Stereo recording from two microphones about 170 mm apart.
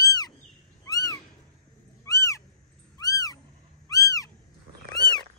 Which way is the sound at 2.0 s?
20° left (ahead or behind).